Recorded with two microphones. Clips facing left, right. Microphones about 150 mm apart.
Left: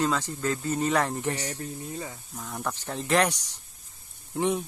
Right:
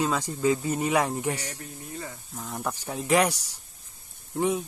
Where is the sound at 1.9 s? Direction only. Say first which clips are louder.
Left 2 dB; 15° left (ahead or behind).